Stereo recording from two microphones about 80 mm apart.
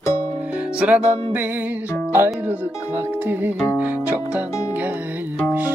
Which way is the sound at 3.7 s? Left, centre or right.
Right.